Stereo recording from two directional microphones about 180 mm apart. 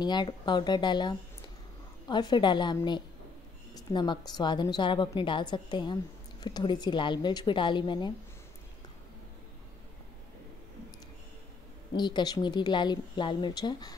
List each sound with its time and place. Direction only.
0.0 s a woman's voice: 25° left (ahead or behind)
12.0 s a woman's voice: 25° left (ahead or behind)